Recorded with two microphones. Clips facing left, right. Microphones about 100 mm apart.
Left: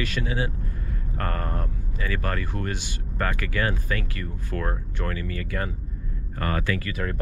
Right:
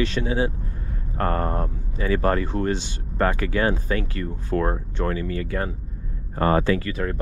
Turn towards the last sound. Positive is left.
turn(degrees=-30)  # may be behind; listen again after turning